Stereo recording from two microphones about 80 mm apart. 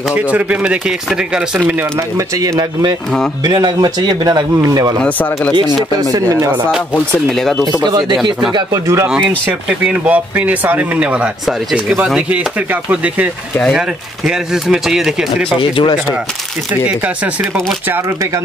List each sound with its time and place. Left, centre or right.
0.1 s speech: centre
2.1 s speech: right
3.4 s a man's voice: right
5.0 s speech: left
6.1 s speech: right
7.2 s speech: centre
7.8 s a man's voice: right
8.7 s speech: right
9.7 s speech: centre
15.6 s speech: left